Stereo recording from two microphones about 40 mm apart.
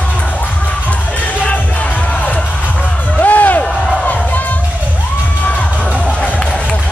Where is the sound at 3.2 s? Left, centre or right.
Left.